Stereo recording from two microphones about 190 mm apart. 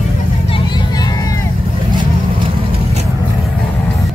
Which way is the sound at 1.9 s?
25° right (ahead or behind).